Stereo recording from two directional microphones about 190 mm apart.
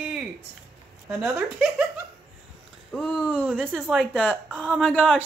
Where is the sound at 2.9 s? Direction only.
5° left (ahead or behind).